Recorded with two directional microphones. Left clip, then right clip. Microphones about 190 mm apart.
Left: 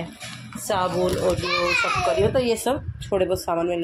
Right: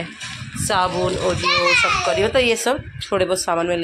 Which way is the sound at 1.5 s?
40° left (ahead or behind).